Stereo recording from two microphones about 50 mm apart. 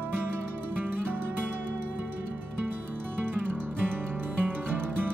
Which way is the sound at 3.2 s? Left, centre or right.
Right.